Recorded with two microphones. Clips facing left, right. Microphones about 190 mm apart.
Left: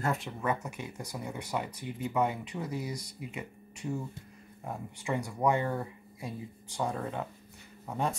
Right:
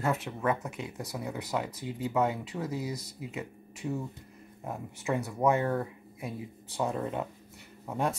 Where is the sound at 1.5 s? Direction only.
15° left (ahead or behind).